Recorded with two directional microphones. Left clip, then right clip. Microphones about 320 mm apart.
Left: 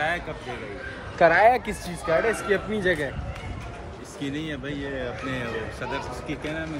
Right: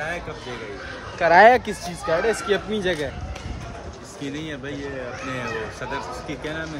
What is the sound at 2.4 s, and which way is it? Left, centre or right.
Speech, centre.